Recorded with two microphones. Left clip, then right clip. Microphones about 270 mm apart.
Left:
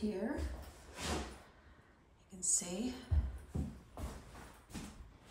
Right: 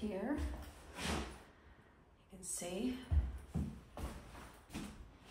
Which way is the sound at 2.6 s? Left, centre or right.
Centre.